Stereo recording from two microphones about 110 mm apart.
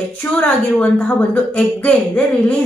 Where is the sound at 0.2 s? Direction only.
15° left (ahead or behind).